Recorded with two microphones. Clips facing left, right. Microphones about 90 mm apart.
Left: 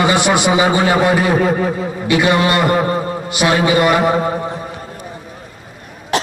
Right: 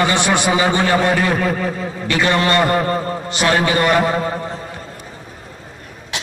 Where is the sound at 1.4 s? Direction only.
35° left (ahead or behind).